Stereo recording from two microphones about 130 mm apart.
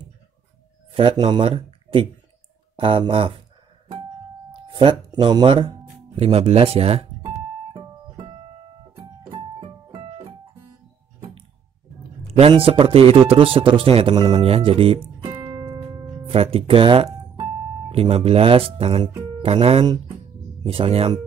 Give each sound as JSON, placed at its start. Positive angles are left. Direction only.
{"t": 0.9, "sound": "speech", "side_deg": -40}
{"t": 4.6, "sound": "speech", "side_deg": -40}
{"t": 7.7, "sound": "music", "side_deg": -40}
{"t": 11.1, "sound": "a sound", "side_deg": -45}
{"t": 12.3, "sound": "speech", "side_deg": -45}
{"t": 15.8, "sound": "music", "side_deg": -30}
{"t": 16.3, "sound": "speech", "side_deg": -45}